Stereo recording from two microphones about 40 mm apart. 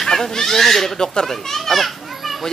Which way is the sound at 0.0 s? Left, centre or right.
Centre.